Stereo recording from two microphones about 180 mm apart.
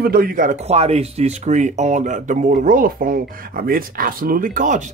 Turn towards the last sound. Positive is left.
turn(degrees=-45)  # may be behind; listen again after turning